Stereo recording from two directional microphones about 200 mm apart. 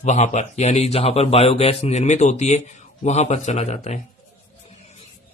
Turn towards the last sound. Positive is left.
turn(degrees=35)  # may be behind; listen again after turning